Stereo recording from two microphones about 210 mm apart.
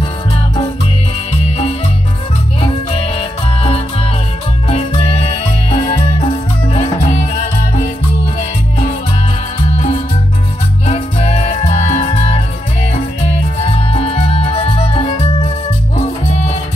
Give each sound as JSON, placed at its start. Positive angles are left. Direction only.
{"t": 2.6, "sound": "music", "side_deg": 25}